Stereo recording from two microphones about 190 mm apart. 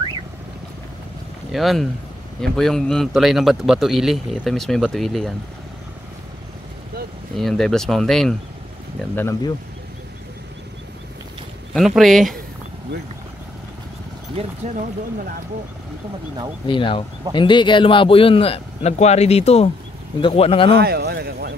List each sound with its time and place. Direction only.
1.5 s a man's voice: centre (ahead or behind)
7.3 s a man's voice: centre (ahead or behind)
9.1 s speech: 15° left (ahead or behind)
11.7 s a man's voice: centre (ahead or behind)
14.4 s speech: 30° right (ahead or behind)
16.6 s a man's voice: 25° left (ahead or behind)
20.8 s a sound: 55° right (ahead or behind)